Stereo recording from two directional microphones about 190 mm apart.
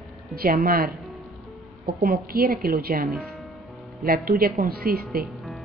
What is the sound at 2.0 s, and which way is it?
A woman's voice, 50° right (ahead or behind).